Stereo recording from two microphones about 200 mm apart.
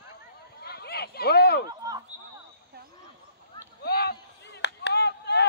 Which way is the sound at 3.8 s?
50° left (ahead or behind).